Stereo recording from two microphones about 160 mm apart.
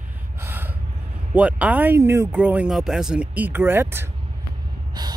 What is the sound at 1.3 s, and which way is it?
Speech, 10° right (ahead or behind).